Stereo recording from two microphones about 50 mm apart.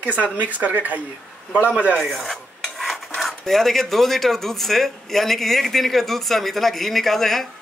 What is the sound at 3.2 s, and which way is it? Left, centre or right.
Speech, centre.